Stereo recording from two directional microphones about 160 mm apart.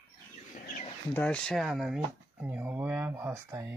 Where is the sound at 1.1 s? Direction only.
10° left (ahead or behind).